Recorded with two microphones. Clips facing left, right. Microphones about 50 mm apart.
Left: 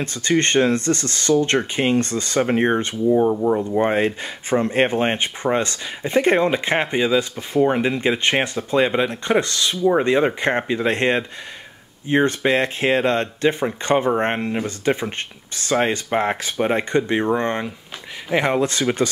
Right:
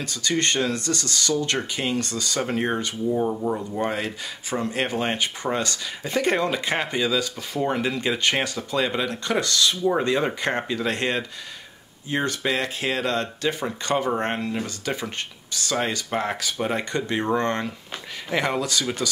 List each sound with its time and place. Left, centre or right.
0.0 s speech: left
3.1 s speech: centre
3.6 s speech: left
18.6 s speech: left